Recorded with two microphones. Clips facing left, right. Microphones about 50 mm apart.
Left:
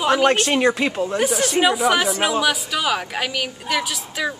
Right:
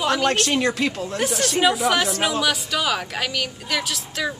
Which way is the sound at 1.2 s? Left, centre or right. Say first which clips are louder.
Left 1 dB; centre.